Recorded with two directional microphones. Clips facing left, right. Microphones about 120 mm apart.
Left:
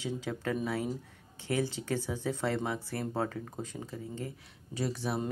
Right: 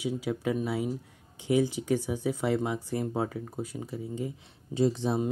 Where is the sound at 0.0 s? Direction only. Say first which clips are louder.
Right 5 dB; 10° right (ahead or behind).